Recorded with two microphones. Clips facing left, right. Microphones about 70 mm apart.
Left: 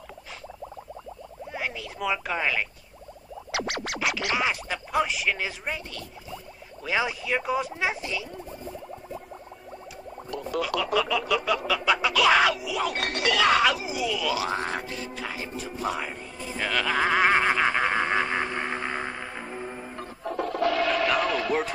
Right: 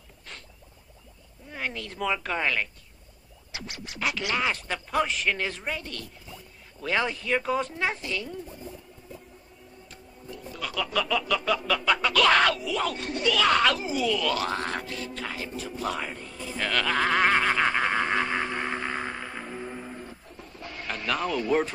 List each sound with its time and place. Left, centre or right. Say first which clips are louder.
1.5 s music: even; centre
3.5 s music: left 10 dB; left
4.3 s music: left 1 dB; centre
10.8 s music: right 1 dB; centre
12.9 s speech: left 1 dB; left
13.3 s speech: left 1 dB; centre
17.6 s a sound: left 1 dB; centre
20.0 s music: left 12 dB; left